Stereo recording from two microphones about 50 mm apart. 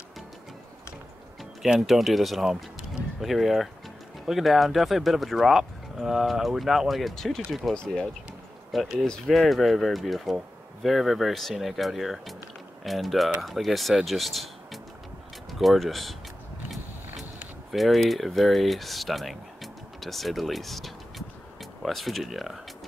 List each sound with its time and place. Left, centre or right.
1.8 s speech: centre
7.7 s speech: centre
8.7 s speech: centre
17.6 s speech: centre